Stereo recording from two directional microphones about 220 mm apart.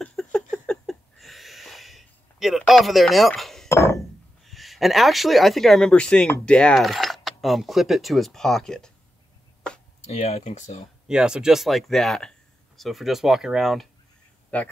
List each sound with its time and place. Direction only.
0.0 s a sound: 5° left (ahead or behind)
3.6 s chink: 10° left (ahead or behind)
4.5 s speech: centre (ahead or behind)
10.1 s speech: 30° left (ahead or behind)
11.1 s speech: 5° right (ahead or behind)